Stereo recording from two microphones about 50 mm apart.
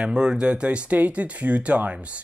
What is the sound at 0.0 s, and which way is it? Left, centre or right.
Speech, centre.